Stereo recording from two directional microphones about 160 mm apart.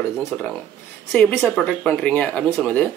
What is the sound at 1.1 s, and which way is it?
Speech, 5° left (ahead or behind).